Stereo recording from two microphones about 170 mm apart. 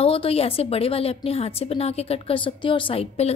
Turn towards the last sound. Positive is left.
turn(degrees=35)  # may be behind; listen again after turning